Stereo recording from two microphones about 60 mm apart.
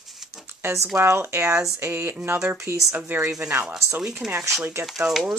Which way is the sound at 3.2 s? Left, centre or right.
Centre.